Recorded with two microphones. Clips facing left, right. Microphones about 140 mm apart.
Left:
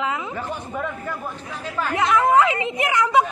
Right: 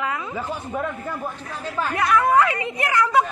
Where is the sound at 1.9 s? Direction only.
20° left (ahead or behind).